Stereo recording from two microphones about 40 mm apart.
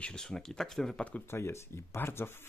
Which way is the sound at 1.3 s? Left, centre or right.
Left.